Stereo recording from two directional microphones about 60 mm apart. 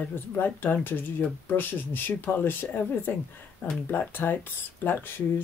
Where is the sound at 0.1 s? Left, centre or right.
Left.